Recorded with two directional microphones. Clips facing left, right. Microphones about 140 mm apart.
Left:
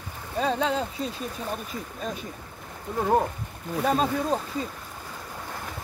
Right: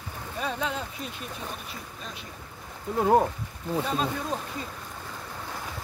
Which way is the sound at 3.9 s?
40° left (ahead or behind).